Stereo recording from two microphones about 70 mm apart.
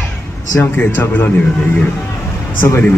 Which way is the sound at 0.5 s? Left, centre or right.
Left.